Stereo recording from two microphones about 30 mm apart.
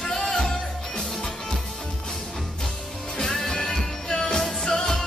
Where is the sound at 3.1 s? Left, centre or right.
Centre.